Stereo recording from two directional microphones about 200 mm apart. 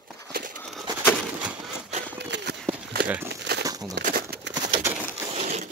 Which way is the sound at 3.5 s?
60° right (ahead or behind).